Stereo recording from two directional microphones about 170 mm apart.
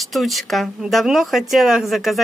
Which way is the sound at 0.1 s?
Centre (ahead or behind).